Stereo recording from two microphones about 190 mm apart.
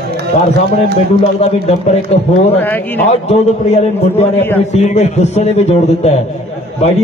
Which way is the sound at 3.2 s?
35° left (ahead or behind).